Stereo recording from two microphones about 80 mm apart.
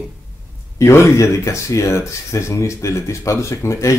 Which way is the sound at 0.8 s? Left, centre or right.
Left.